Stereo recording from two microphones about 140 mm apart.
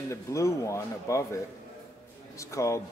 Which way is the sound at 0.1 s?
20° left (ahead or behind).